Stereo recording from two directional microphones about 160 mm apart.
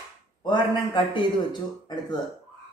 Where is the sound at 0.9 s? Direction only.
30° left (ahead or behind).